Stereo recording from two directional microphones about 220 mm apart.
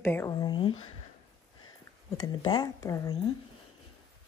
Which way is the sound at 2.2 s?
20° left (ahead or behind).